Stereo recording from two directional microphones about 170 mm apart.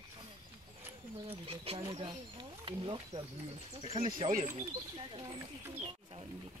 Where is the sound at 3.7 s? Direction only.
35° right (ahead or behind).